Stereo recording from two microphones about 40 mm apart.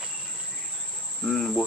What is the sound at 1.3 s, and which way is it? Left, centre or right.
Speech, centre.